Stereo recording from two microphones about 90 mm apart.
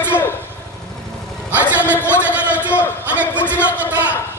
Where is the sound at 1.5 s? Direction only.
15° right (ahead or behind).